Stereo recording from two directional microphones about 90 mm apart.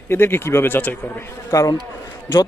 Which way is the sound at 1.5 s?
40° left (ahead or behind).